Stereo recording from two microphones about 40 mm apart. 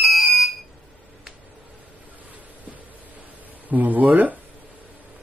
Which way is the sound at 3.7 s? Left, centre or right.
Right.